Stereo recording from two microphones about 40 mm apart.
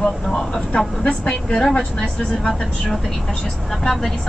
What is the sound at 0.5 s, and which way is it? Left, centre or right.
Speech, left.